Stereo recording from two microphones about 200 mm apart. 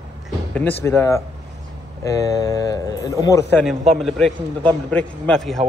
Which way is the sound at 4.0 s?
Centre (ahead or behind).